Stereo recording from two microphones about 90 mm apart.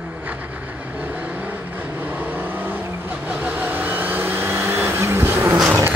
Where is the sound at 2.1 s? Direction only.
20° right (ahead or behind).